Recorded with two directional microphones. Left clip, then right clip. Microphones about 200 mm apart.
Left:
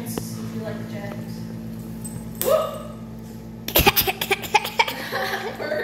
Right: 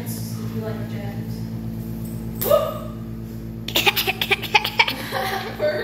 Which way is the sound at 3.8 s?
20° left (ahead or behind).